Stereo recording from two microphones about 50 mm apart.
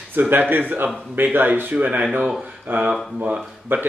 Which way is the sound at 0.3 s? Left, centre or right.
Right.